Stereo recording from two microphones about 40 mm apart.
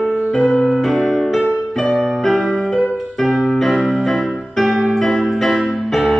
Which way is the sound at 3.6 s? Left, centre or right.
Centre.